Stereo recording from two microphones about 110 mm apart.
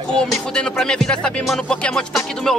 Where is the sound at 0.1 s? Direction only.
5° left (ahead or behind).